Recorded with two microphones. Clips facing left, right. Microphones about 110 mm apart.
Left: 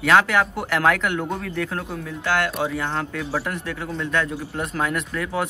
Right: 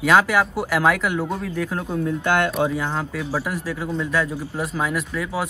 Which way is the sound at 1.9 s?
20° right (ahead or behind).